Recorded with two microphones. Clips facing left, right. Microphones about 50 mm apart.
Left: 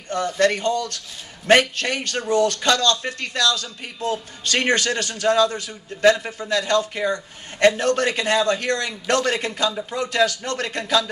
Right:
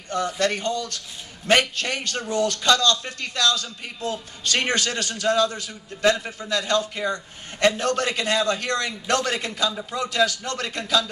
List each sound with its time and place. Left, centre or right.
0.4 s a man's voice: left